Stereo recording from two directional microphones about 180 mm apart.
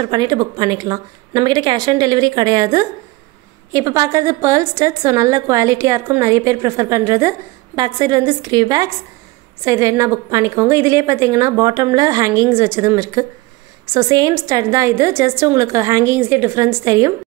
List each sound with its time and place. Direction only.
0.0 s a woman's voice: 25° right (ahead or behind)